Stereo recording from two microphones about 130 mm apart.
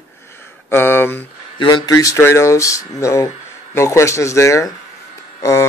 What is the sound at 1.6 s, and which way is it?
Speech, 40° left (ahead or behind).